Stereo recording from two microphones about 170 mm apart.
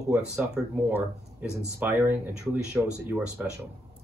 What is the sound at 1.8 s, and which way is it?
Speech, 10° right (ahead or behind).